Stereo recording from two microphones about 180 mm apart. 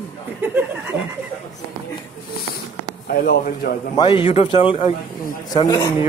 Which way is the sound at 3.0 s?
55° left (ahead or behind).